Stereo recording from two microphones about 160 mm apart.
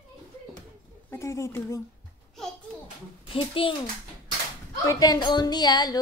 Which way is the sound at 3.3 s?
35° left (ahead or behind).